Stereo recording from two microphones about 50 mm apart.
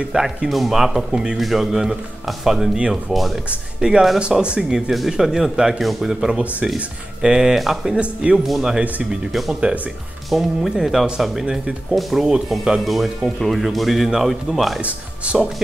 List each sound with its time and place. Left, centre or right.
0.1 s speech: centre
3.8 s speech: centre
8.0 s speech: right
8.5 s speech: centre
9.5 s speech: centre
10.3 s speech: centre
14.8 s speech: right